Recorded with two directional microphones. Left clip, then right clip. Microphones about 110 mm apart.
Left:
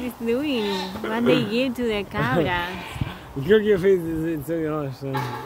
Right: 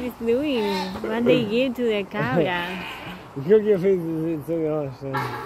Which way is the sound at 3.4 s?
55° left (ahead or behind).